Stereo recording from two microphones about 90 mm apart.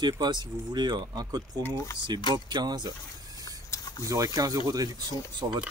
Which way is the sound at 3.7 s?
40° left (ahead or behind).